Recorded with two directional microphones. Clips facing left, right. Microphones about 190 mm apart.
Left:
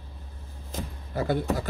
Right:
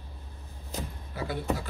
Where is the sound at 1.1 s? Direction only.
45° left (ahead or behind).